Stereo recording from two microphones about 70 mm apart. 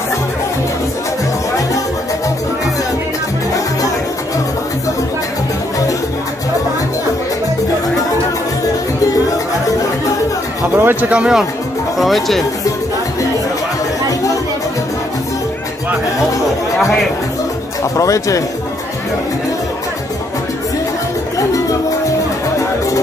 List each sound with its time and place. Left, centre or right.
10.8 s speech: right
11.1 s speech: centre
12.0 s speech: centre
17.9 s speech: left
21.4 s music: left